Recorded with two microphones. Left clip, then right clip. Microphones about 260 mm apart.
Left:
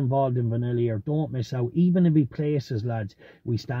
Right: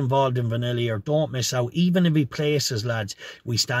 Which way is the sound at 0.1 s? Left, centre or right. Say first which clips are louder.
Right 3 dB; centre.